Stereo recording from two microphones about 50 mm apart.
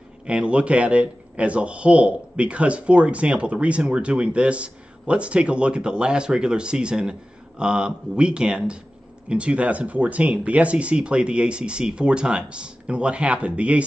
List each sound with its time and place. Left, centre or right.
0.3 s speech: right